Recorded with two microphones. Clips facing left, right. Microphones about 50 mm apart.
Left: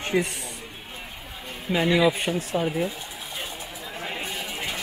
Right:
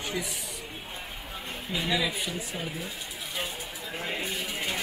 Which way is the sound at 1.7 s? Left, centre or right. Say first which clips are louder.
Left 9 dB; left.